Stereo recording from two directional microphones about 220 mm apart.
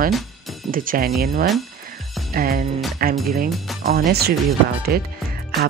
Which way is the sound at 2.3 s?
40° right (ahead or behind).